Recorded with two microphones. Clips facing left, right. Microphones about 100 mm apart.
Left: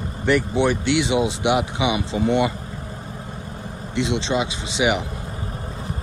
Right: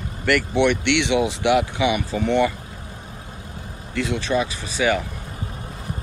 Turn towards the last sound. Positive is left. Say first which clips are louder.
# even
turn(degrees=20)  # may be behind; listen again after turning